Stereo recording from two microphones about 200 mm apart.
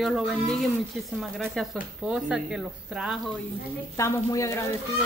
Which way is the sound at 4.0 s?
15° left (ahead or behind).